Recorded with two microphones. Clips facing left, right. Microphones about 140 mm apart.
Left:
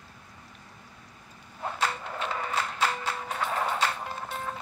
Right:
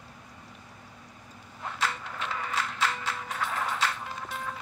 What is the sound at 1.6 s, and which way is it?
Music, 35° left (ahead or behind).